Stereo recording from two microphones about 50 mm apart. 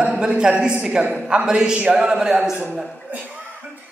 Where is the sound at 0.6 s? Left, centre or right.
Centre.